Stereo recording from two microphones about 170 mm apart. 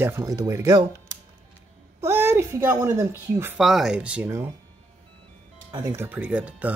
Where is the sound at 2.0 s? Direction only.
15° right (ahead or behind).